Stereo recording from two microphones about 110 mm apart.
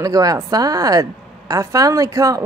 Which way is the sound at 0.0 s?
35° right (ahead or behind).